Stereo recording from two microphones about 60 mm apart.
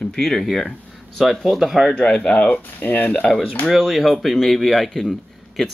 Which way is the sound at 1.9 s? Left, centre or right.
Centre.